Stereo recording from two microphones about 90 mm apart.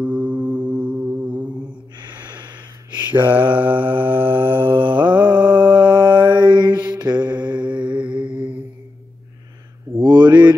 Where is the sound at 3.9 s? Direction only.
70° right (ahead or behind).